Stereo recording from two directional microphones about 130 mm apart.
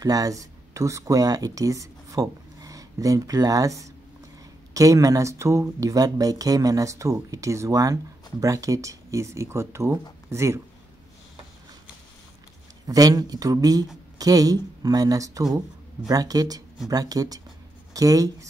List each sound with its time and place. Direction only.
0.0 s speech: 30° right (ahead or behind)
12.8 s speech: 30° right (ahead or behind)